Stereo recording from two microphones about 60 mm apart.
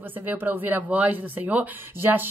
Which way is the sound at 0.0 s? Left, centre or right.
Right.